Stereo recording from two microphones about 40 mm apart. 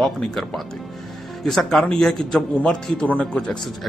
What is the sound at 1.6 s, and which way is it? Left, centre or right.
Speech, centre.